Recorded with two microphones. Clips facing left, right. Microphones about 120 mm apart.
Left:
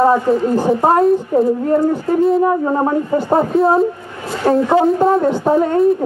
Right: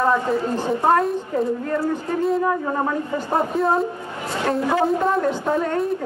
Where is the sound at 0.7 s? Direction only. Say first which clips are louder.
Left 6 dB; 30° left (ahead or behind).